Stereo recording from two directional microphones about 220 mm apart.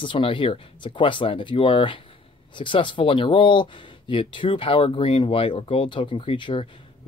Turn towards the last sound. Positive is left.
turn(degrees=20)  # may be behind; listen again after turning